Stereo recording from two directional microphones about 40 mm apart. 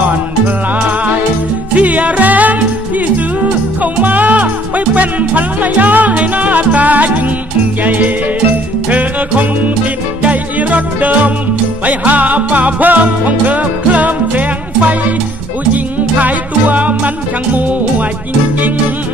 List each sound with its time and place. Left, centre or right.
0.7 s music: right
3.8 s music: right
10.2 s music: right